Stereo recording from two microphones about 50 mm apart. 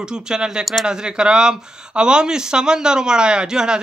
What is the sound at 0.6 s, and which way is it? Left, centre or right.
Speech, centre.